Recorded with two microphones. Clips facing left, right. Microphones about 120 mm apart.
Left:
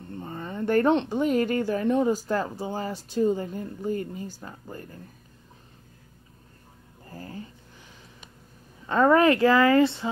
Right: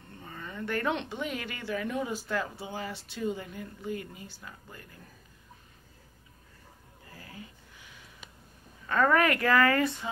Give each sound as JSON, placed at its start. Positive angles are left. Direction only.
{"t": 0.1, "sound": "speech", "side_deg": 35}
{"t": 7.1, "sound": "a sound", "side_deg": 40}
{"t": 8.8, "sound": "speech", "side_deg": 25}